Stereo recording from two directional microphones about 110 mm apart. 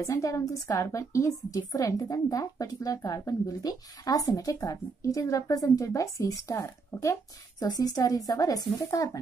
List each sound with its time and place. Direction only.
0.0 s a woman's voice: 30° left (ahead or behind)